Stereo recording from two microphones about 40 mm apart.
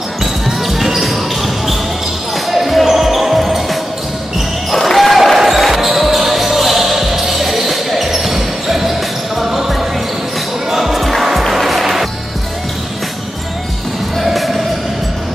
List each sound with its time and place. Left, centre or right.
0.7 s basketball bounce: centre
11.2 s music: centre
14.1 s music: centre